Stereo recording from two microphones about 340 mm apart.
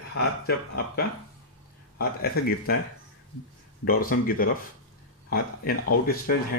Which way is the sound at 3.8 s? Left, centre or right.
Left.